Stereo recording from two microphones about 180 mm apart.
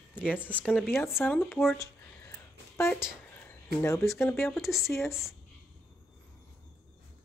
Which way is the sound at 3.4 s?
15° left (ahead or behind).